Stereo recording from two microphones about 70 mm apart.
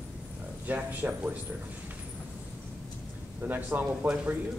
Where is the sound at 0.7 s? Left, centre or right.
Right.